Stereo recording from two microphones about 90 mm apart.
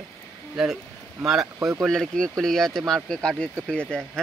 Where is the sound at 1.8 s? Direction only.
5° left (ahead or behind).